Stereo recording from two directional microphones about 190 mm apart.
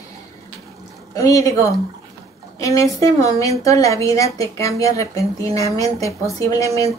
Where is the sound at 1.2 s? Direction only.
15° left (ahead or behind).